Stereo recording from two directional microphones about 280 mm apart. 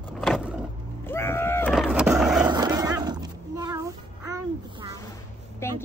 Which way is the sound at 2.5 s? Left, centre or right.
Centre.